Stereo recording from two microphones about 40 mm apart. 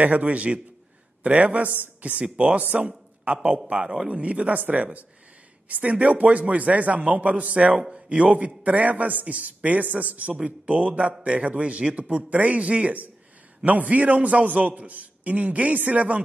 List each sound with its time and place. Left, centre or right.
0.0 s a man's voice: right
7.8 s a man's voice: right
8.2 s a man's voice: right
13.7 s a man's voice: right